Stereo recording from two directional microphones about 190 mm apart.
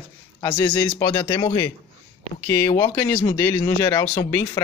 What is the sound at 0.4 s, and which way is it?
Speech, 15° left (ahead or behind).